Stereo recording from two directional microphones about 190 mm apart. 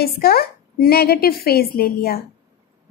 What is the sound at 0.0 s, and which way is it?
A woman's voice, 55° left (ahead or behind).